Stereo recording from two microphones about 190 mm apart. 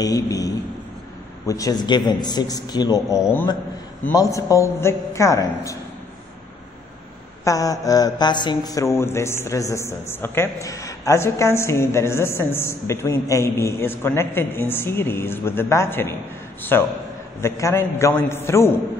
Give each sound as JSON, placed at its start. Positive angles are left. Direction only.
{"t": 0.0, "sound": "a man's voice", "side_deg": 20}
{"t": 7.4, "sound": "speech", "side_deg": 20}